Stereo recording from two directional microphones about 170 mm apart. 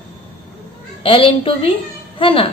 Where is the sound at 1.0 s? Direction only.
30° left (ahead or behind).